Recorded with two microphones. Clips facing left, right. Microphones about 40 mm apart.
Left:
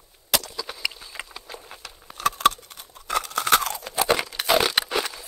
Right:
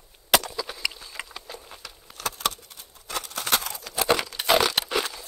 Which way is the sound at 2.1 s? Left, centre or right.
Left.